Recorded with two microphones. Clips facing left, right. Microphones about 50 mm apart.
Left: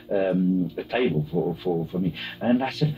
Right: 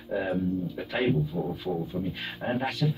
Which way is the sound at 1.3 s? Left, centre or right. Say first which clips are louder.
Left 7 dB; left.